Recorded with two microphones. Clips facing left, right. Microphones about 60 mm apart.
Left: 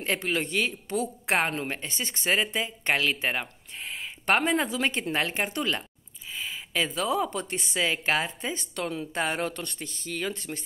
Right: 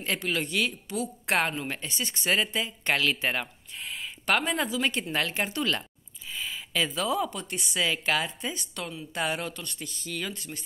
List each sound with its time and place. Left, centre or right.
0.0 s speech: left
1.2 s a woman's voice: left
3.7 s a sound: left
4.6 s speech: left
5.1 s speech: left
6.4 s a sound: left
7.4 s speech: left